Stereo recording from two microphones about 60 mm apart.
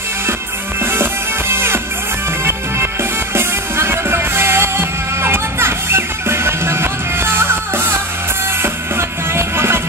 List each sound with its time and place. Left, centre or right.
1.5 s music: right